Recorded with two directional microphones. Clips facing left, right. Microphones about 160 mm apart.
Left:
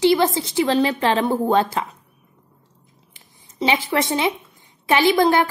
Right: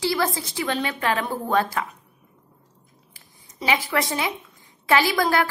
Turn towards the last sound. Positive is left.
turn(degrees=20)  # may be behind; listen again after turning